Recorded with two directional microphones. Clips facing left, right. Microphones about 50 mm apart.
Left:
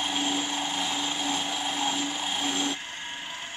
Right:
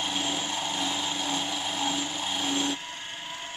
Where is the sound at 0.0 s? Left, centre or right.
Centre.